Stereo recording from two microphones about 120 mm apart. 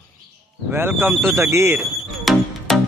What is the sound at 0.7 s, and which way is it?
Speech, 20° right (ahead or behind).